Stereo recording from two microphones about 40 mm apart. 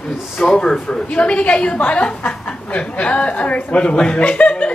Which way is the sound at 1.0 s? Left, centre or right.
Left.